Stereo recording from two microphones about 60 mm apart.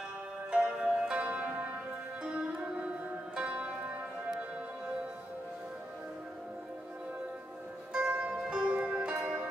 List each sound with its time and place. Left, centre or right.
0.5 s music: centre
7.9 s zither: centre
9.2 s music: right